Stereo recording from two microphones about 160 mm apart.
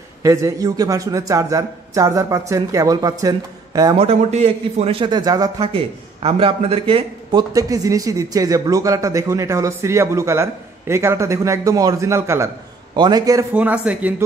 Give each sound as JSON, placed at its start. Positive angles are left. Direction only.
{"t": 0.2, "sound": "a man's voice", "side_deg": -20}
{"t": 3.9, "sound": "a man's voice", "side_deg": -40}
{"t": 6.2, "sound": "a man's voice", "side_deg": -35}
{"t": 7.5, "sound": "a man's voice", "side_deg": -20}
{"t": 13.5, "sound": "speech", "side_deg": -10}